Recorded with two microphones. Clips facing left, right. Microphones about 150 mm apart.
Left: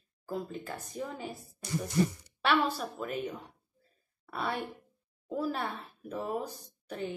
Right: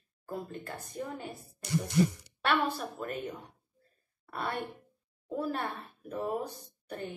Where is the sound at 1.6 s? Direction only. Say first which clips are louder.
Right 2 dB; 70° right (ahead or behind).